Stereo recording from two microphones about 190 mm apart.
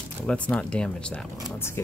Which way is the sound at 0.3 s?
5° left (ahead or behind).